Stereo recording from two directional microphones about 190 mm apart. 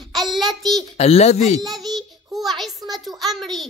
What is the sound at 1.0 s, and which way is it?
Speech, 35° left (ahead or behind).